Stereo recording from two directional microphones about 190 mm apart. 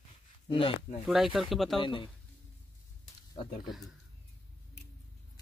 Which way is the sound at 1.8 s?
25° left (ahead or behind).